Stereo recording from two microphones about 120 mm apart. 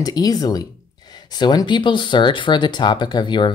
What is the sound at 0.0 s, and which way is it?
Speech, 30° left (ahead or behind).